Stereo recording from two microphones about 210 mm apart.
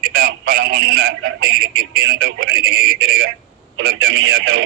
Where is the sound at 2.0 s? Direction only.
70° right (ahead or behind).